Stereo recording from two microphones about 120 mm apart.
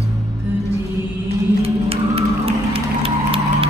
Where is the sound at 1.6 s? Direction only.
55° right (ahead or behind).